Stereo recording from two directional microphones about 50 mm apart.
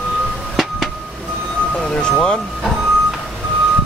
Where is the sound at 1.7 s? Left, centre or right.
Centre.